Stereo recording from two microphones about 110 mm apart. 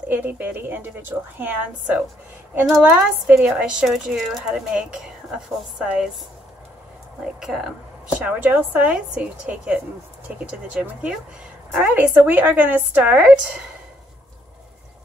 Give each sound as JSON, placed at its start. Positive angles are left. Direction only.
{"t": 0.1, "sound": "a woman's voice", "side_deg": -15}
{"t": 7.3, "sound": "speech", "side_deg": -5}
{"t": 8.2, "sound": "a woman's voice", "side_deg": -15}